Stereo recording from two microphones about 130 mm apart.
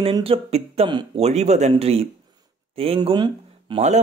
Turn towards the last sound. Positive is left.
turn(degrees=-40)  # may be behind; listen again after turning